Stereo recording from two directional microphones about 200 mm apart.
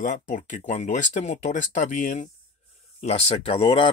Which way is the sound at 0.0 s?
40° left (ahead or behind).